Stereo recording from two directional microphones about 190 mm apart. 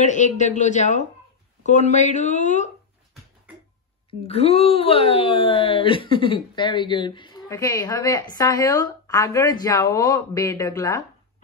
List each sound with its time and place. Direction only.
0.0 s speech: 40° left (ahead or behind)
4.1 s speech: 35° left (ahead or behind)